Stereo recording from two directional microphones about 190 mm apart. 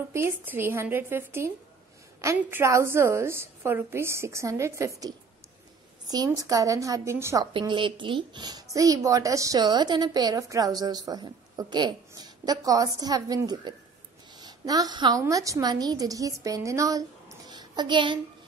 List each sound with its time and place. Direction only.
0.1 s a woman's voice: 10° right (ahead or behind)
7.5 s a woman's voice: 25° right (ahead or behind)
17.5 s a sound: 20° right (ahead or behind)